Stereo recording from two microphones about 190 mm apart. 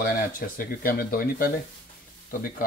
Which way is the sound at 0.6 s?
50° left (ahead or behind).